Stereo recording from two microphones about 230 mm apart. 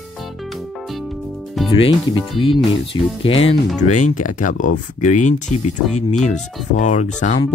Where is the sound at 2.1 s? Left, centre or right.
Left.